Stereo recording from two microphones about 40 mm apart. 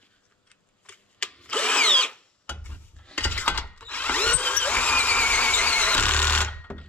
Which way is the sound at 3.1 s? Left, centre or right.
Left.